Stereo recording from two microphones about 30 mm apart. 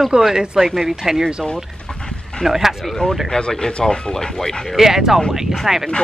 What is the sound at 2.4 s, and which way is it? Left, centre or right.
Speech, centre.